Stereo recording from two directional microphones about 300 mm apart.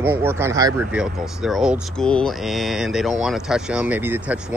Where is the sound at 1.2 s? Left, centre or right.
Centre.